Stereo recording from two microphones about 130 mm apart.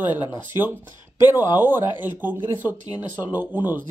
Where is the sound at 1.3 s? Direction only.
15° right (ahead or behind).